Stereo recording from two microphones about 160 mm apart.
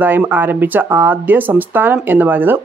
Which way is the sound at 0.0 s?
10° right (ahead or behind).